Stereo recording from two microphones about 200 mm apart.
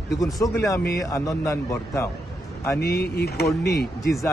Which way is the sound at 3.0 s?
50° left (ahead or behind).